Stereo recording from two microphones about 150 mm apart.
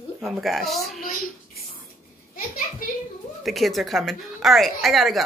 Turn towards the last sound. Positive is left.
turn(degrees=0)  # may be behind; listen again after turning